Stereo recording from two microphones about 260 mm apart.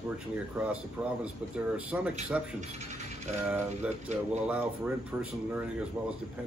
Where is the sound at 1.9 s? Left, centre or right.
Centre.